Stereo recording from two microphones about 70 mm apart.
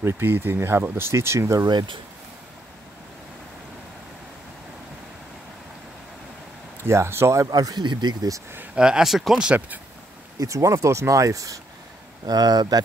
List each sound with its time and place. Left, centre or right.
0.0 s speech: right
6.8 s speech: right
7.4 s speech: right
8.7 s speech: centre
10.4 s speech: right
12.3 s speech: right